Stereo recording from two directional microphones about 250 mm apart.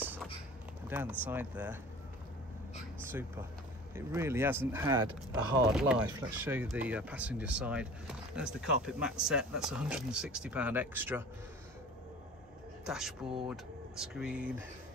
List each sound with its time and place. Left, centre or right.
0.0 s a sound: centre
0.8 s speech: centre
3.1 s speech: centre
12.8 s speech: centre